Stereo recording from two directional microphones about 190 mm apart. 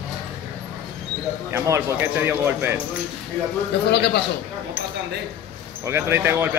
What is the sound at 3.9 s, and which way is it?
Speech, 60° left (ahead or behind).